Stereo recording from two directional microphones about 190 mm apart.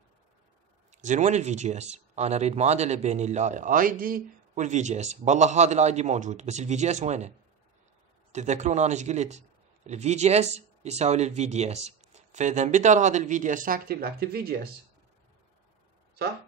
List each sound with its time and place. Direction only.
0.9 s speech: 40° right (ahead or behind); by 14.7 s 55° right (ahead or behind)